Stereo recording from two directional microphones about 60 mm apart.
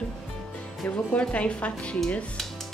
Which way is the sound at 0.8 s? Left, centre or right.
Centre.